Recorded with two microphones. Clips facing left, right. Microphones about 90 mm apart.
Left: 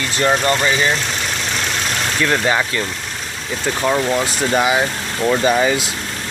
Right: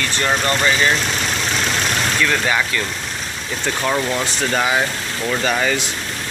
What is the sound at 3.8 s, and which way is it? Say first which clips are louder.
Speech: left 3 dB; 10° left (ahead or behind).